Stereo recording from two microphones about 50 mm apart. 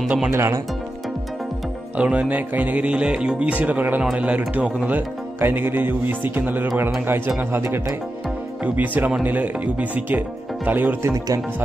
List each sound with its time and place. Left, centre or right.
0.3 s speech: right
2.0 s speech: right
4.0 s speech: right
4.8 s a man's voice: right
8.6 s speech: right
11.0 s speech: right